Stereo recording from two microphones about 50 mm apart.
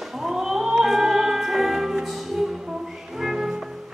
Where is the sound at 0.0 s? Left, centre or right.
Centre.